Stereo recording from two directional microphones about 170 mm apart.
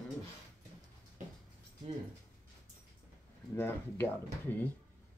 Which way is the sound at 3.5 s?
15° left (ahead or behind).